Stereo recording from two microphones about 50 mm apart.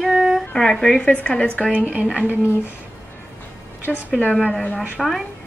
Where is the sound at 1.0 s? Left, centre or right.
Left.